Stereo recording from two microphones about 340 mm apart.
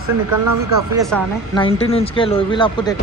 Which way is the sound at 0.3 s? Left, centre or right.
Right.